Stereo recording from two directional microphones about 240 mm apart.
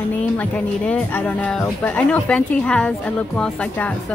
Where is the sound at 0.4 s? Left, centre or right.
Centre.